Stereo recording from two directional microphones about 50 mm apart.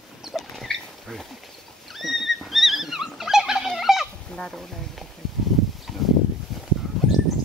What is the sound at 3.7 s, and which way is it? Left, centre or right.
Fowl, centre.